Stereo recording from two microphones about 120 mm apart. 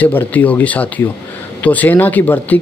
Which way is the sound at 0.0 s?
15° left (ahead or behind).